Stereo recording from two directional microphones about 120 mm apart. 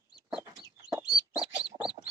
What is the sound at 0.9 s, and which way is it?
Chicken, 5° right (ahead or behind).